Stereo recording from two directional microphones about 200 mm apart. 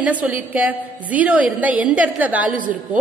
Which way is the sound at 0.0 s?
5° right (ahead or behind).